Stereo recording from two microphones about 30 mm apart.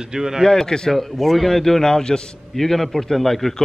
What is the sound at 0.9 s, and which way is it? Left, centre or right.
A man's voice, centre.